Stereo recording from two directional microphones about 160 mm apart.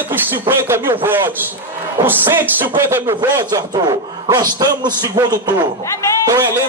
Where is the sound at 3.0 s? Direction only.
25° right (ahead or behind).